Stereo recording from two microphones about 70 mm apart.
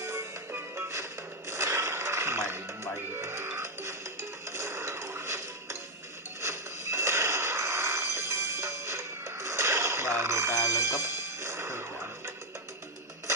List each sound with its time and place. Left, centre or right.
0.0 s music: right